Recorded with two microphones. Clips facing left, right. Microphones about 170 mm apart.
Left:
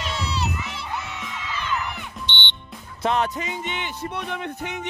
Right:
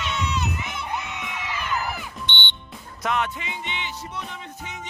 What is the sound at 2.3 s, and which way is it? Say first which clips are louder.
Music: even; 50° right (ahead or behind).